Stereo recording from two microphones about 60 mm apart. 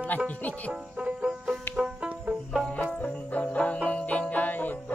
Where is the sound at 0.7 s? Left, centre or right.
Centre.